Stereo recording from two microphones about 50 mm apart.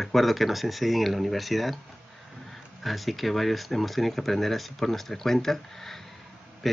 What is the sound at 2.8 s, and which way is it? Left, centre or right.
Speech, centre.